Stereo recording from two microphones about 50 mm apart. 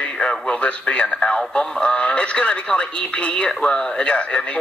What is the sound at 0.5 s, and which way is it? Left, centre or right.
Speech, left.